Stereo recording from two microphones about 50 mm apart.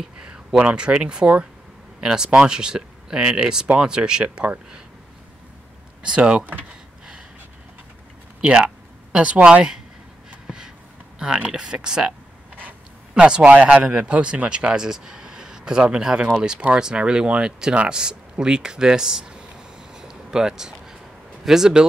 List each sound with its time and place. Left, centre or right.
0.0 s speech: centre
6.0 s speech: right
8.4 s speech: right
11.1 s speech: centre
13.1 s speech: centre
20.0 s a sound: centre
21.5 s speech: centre